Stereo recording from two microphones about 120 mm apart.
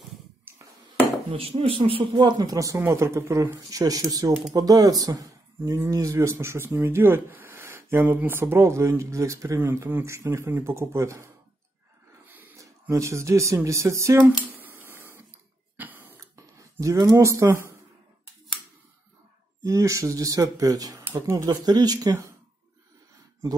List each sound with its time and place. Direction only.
1.3 s speech: 55° right (ahead or behind); by 11.2 s 25° right (ahead or behind)
12.3 s speech: 15° right (ahead or behind)
14.5 s a sound: 15° right (ahead or behind)
19.6 s speech: 25° right (ahead or behind)
21.5 s speech: 35° right (ahead or behind)